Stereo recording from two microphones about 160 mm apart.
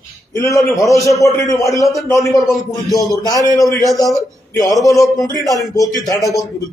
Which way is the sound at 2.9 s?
25° left (ahead or behind).